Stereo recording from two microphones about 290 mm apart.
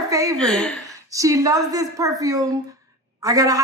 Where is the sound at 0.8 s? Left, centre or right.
Centre.